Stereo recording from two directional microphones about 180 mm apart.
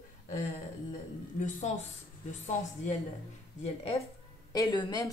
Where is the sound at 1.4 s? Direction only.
40° left (ahead or behind).